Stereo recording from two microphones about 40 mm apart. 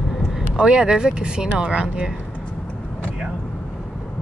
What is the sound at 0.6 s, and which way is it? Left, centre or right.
Speech, right.